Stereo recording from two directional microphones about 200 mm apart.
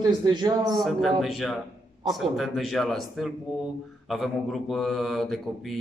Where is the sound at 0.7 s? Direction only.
Centre (ahead or behind).